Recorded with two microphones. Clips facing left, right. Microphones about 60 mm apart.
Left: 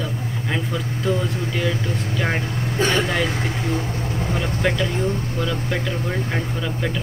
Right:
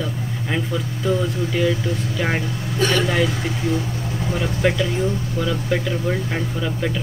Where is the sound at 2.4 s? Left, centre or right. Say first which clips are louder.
Even; left.